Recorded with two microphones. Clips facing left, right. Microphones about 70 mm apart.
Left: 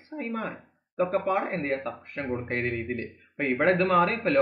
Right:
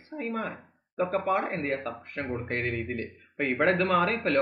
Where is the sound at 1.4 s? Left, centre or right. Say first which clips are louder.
Left 1 dB; centre.